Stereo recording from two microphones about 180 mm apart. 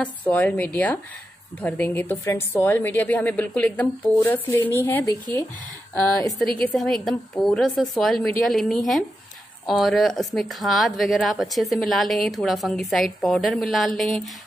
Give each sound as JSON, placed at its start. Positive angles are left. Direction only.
{"t": 0.0, "sound": "a woman's voice", "side_deg": 10}
{"t": 6.6, "sound": "a woman's voice", "side_deg": 5}